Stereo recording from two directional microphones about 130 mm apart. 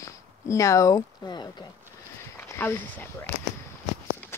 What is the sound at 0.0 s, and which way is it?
Speech, 25° left (ahead or behind).